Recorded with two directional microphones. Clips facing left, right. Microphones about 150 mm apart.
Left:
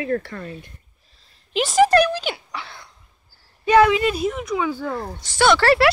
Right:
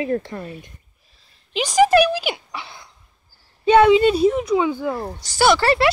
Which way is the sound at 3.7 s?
25° right (ahead or behind).